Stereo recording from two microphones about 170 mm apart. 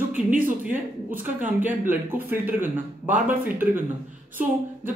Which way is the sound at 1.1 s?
10° right (ahead or behind).